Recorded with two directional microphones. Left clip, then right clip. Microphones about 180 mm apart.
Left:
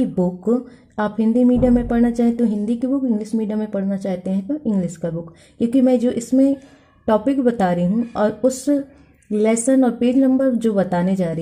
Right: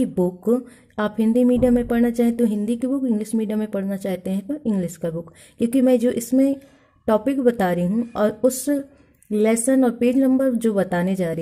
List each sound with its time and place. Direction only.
0.0 s speech: 25° right (ahead or behind)